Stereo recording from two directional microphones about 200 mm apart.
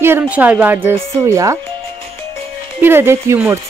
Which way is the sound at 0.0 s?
10° right (ahead or behind).